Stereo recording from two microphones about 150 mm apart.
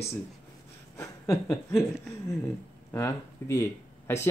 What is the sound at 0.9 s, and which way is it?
Speech, 20° left (ahead or behind).